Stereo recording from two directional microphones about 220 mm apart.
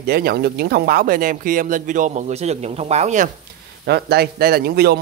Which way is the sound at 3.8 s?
45° right (ahead or behind).